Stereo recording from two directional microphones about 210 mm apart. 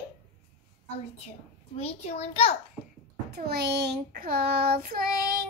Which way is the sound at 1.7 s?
30° left (ahead or behind).